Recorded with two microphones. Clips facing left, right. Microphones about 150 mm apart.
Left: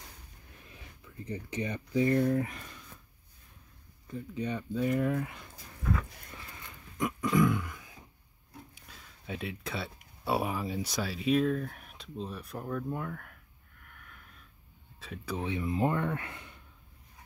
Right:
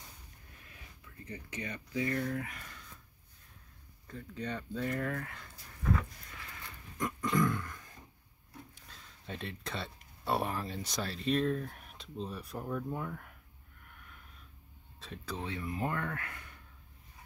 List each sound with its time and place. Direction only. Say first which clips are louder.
1.2 s speech: left 7 dB; 25° left (ahead or behind)
4.1 s speech: left 5 dB; 10° left (ahead or behind)
7.0 s a sound: left 4 dB; 10° left (ahead or behind)
8.7 s speech: left 2 dB; 5° left (ahead or behind)
13.8 s a sound: left 1 dB; centre (ahead or behind)
15.0 s speech: left 4 dB; 10° left (ahead or behind)